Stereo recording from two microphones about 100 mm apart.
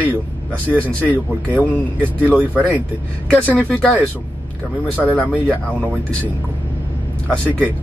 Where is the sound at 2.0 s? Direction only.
15° right (ahead or behind).